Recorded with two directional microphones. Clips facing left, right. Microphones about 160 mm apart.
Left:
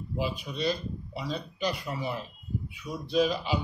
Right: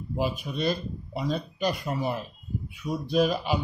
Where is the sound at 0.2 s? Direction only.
50° right (ahead or behind).